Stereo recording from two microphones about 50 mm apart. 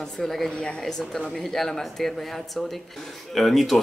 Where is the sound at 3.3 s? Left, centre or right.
Centre.